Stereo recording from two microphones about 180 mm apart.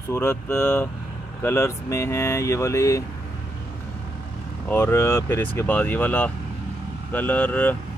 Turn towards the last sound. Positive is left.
turn(degrees=10)  # may be behind; listen again after turning